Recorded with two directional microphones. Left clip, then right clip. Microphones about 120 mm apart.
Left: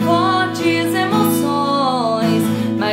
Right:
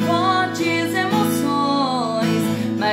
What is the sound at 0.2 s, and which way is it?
Music, 15° left (ahead or behind).